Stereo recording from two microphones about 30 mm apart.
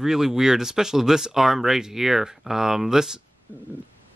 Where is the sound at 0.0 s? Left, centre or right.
Centre.